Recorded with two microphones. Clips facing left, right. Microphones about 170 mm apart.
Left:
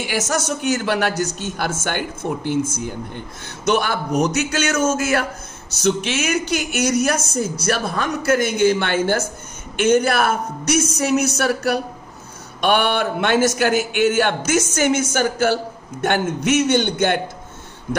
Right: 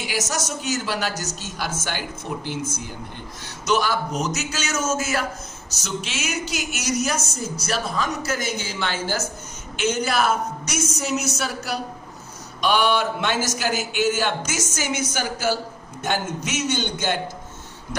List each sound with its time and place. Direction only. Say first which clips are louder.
0.3 s a man's voice: left 6 dB; 55° left (ahead or behind)
3.6 s a man's voice: left 3 dB; 55° left (ahead or behind)